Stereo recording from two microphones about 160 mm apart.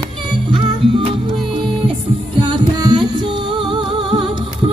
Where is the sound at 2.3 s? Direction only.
30° right (ahead or behind).